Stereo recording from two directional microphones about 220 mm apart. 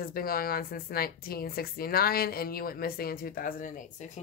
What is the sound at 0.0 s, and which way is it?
Speech, 40° left (ahead or behind).